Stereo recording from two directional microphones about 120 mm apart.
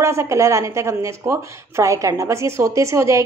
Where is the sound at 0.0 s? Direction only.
25° right (ahead or behind).